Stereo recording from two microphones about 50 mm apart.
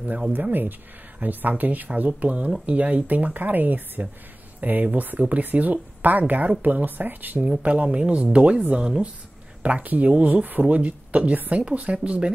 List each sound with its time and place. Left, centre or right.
0.3 s speech: right
7.4 s speech: right